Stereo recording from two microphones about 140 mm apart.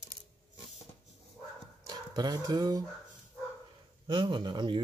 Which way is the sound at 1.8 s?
30° right (ahead or behind).